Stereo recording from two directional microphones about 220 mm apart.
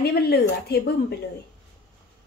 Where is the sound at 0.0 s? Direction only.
45° left (ahead or behind).